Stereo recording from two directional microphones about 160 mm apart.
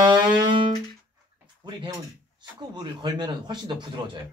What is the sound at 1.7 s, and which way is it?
Speech, 30° right (ahead or behind).